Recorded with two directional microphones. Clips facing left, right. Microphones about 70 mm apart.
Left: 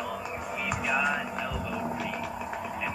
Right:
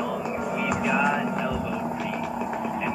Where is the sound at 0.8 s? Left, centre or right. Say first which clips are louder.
Right 4 dB; right.